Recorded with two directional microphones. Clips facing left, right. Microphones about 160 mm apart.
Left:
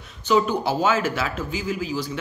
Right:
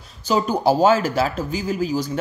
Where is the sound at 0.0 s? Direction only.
35° right (ahead or behind).